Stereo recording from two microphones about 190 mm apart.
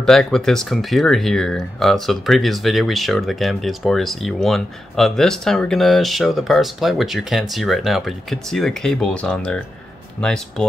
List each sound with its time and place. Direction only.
0.0 s speech: centre (ahead or behind)